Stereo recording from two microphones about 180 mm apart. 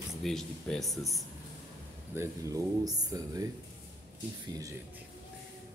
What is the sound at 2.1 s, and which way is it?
Speech, 20° right (ahead or behind).